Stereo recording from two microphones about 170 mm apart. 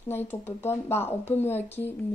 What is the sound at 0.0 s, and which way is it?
Speech, 15° left (ahead or behind).